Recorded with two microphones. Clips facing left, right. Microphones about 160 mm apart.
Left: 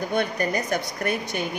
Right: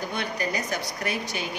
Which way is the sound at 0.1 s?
50° left (ahead or behind).